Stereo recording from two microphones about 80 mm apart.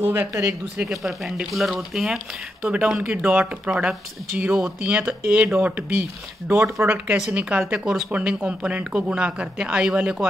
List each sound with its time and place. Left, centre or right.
0.0 s speech: right
0.8 s speech: centre
2.6 s speech: centre
7.8 s speech: centre